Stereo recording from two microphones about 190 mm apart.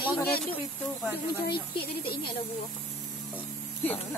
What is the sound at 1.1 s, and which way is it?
Speech, 60° left (ahead or behind).